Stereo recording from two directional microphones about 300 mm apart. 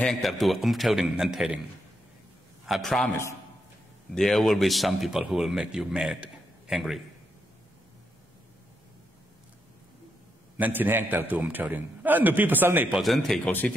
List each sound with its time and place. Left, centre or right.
0.0 s a man's voice: centre
2.6 s a man's voice: centre
10.6 s a man's voice: centre